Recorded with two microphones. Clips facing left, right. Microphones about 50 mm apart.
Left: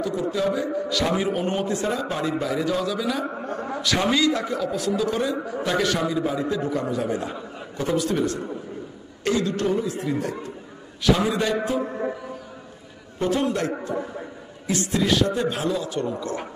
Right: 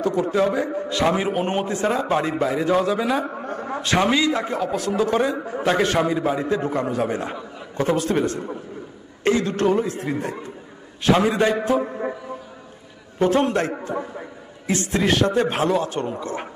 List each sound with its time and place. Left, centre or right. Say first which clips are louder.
0.0 s a man's voice: right 4 dB; right
3.4 s a sound: right 1 dB; right
4.1 s speech: right 1 dB; right
4.5 s a man's voice: right 1 dB; right
10.1 s a man's voice: even; right
13.2 s a man's voice: right 4 dB; right